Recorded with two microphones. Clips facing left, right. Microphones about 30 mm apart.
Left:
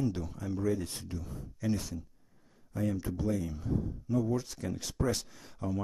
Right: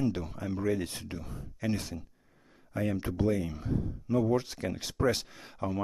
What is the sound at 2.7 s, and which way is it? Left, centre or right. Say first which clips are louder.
Speech: right 3 dB; right.